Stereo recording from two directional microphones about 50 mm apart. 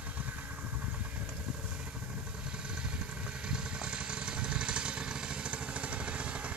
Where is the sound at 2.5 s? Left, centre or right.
Centre.